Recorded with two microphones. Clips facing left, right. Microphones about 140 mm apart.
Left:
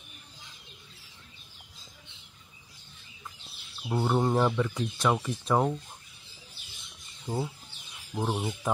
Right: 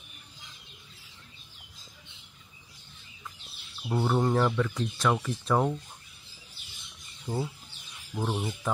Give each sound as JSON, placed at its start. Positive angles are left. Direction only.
{"t": 3.9, "sound": "speech", "side_deg": 10}
{"t": 7.2, "sound": "speech", "side_deg": 15}